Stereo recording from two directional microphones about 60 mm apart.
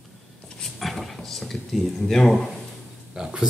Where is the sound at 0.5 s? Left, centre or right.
Centre.